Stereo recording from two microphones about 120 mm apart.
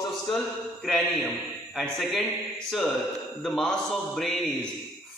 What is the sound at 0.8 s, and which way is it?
Speech, 10° left (ahead or behind).